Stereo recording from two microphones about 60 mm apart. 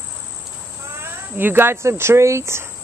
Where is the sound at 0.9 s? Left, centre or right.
Right.